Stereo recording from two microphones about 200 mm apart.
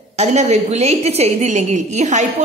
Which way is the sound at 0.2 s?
35° right (ahead or behind).